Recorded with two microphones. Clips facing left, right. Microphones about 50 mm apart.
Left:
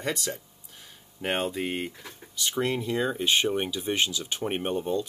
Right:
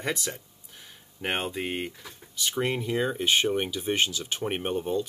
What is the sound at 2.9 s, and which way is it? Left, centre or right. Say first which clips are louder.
Speech: even; centre.